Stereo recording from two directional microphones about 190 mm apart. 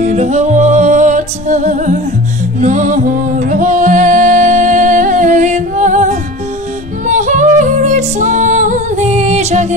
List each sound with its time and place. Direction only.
0.0 s music: 35° right (ahead or behind)